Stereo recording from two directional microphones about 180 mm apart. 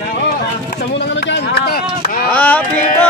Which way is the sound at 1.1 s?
75° left (ahead or behind).